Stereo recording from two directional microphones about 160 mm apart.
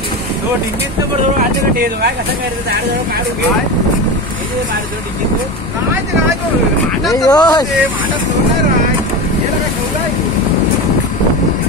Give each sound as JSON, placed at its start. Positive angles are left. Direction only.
{"t": 1.8, "sound": "speech", "side_deg": -80}
{"t": 7.2, "sound": "speech", "side_deg": 25}